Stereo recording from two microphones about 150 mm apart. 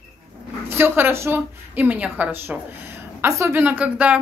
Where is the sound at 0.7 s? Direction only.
15° right (ahead or behind).